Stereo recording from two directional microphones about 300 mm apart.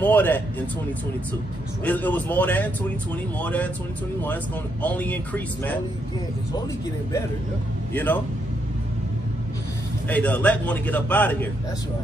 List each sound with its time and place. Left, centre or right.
0.0 s a man's voice: centre
1.9 s a man's voice: centre
4.8 s a man's voice: centre
7.9 s a man's voice: centre
10.0 s a man's voice: centre